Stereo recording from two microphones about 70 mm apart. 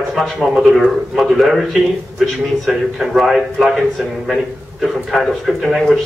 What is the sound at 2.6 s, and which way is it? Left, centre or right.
A man's voice, centre.